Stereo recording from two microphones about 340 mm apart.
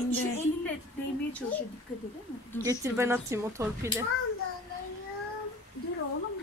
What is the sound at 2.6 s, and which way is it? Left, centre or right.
Speech, centre.